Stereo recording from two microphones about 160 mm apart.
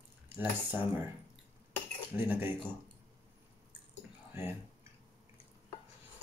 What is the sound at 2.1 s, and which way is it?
Speech, 10° right (ahead or behind).